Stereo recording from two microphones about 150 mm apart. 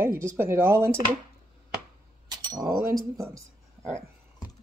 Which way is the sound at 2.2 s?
25° right (ahead or behind).